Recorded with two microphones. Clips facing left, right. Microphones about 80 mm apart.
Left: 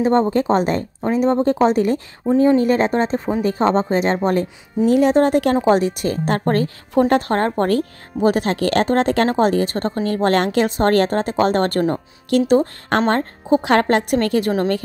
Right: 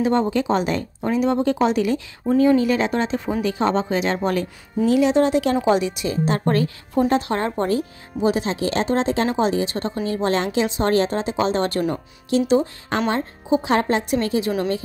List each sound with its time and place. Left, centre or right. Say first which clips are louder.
0.0 s a woman's voice: left 3 dB; left
2.2 s a woman's voice: left 2 dB; left
2.6 s a woman's voice: left 4 dB; left
6.9 s speech: left 4 dB; left